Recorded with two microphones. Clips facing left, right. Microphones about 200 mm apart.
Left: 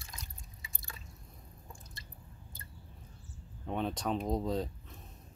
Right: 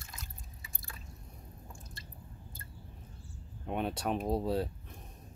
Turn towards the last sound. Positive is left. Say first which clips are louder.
# right 2 dB
turn(degrees=-10)  # may be behind; listen again after turning